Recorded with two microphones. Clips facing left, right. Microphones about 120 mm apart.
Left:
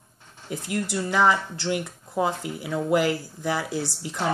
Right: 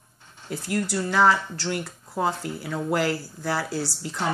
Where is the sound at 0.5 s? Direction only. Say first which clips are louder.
Right 1 dB; 20° left (ahead or behind).